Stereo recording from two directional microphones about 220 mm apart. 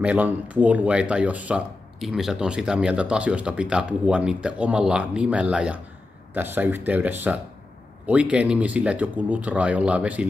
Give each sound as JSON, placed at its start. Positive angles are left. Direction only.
{"t": 0.0, "sound": "speech", "side_deg": -5}